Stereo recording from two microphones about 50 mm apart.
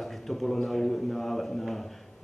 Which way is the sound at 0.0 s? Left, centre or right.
Centre.